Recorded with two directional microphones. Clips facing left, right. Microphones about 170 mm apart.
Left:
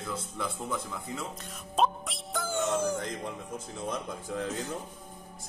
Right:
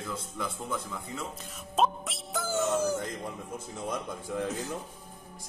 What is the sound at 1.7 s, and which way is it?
Music, centre (ahead or behind).